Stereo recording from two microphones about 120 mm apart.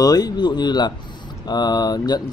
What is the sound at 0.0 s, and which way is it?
A man's voice, 35° left (ahead or behind).